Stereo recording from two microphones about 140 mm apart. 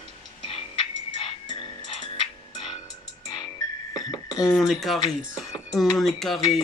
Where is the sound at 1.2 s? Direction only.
35° left (ahead or behind).